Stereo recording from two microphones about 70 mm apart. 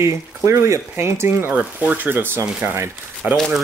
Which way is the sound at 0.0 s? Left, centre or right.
Right.